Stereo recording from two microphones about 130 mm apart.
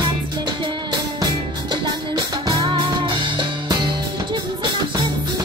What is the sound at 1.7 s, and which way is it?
Music, 40° right (ahead or behind).